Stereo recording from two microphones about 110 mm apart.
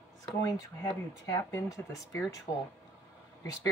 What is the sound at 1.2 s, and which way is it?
Speech, 25° left (ahead or behind).